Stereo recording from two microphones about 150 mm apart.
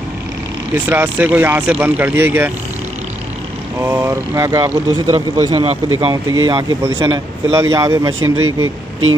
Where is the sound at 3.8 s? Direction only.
15° right (ahead or behind).